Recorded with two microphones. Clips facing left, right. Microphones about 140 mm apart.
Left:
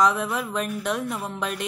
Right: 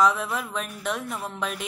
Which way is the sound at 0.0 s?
Centre (ahead or behind).